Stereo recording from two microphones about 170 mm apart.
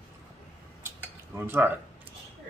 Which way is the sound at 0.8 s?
15° right (ahead or behind).